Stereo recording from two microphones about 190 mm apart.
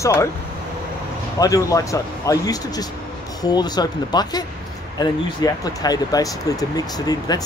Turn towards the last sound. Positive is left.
turn(degrees=20)  # may be behind; listen again after turning